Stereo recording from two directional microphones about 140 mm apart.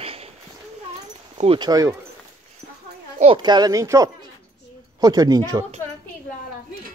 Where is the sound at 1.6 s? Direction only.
25° right (ahead or behind).